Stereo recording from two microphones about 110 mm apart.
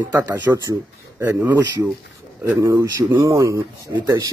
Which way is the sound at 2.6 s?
30° right (ahead or behind).